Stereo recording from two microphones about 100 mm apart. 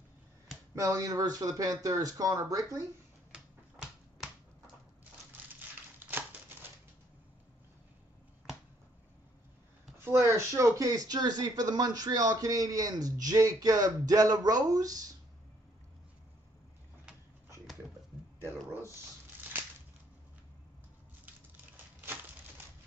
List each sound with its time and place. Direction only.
0.7 s speech: 35° right (ahead or behind)
6.0 s typewriter: 15° right (ahead or behind)
9.9 s speech: 25° right (ahead or behind)